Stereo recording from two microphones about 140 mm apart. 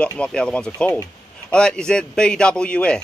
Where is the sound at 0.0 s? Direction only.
10° left (ahead or behind).